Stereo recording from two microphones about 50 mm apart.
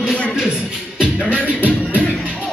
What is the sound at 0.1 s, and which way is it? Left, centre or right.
Music, left.